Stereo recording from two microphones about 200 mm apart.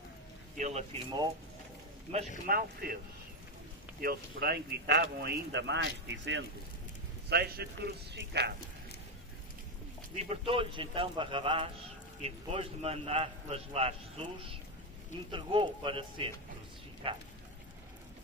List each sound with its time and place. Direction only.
0.6 s speech: 35° right (ahead or behind)
2.4 s speech: 45° right (ahead or behind)
4.0 s a man's voice: 50° right (ahead or behind)
10.1 s a man's voice: 30° right (ahead or behind)